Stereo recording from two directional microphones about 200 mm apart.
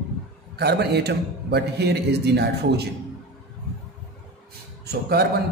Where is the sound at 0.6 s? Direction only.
55° right (ahead or behind).